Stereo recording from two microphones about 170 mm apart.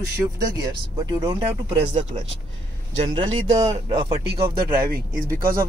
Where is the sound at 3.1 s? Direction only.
25° right (ahead or behind).